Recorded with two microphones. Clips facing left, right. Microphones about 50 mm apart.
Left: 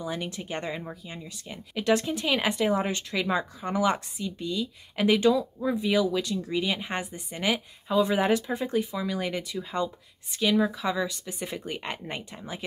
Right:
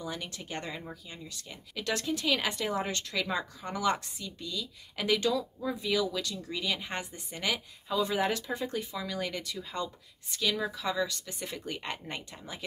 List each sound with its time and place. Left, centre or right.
0.0 s speech: centre